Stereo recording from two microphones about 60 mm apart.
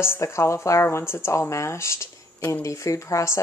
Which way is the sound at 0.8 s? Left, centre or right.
Left.